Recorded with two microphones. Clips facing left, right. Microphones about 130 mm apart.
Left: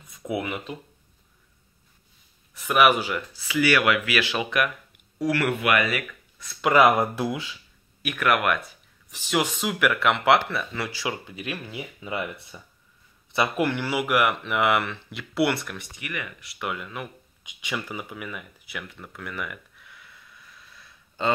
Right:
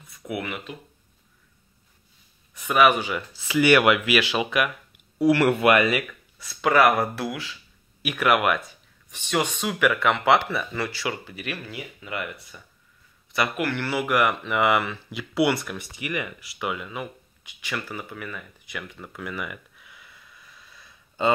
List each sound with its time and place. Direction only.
0.2 s speech: 20° left (ahead or behind)
2.5 s speech: 5° left (ahead or behind)
3.5 s speech: 25° right (ahead or behind)
5.2 s speech: 25° right (ahead or behind)
6.7 s speech: 15° left (ahead or behind)
8.0 s speech: 10° right (ahead or behind)
9.1 s speech: 5° left (ahead or behind)
10.9 s speech: 15° left (ahead or behind)
12.0 s speech: 25° left (ahead or behind)
13.7 s speech: 10° left (ahead or behind); by 15.9 s 5° right (ahead or behind)
16.0 s speech: 20° right (ahead or behind)
16.3 s speech: 5° right (ahead or behind)
17.4 s speech: 20° left (ahead or behind)
18.8 s a sound: centre (ahead or behind)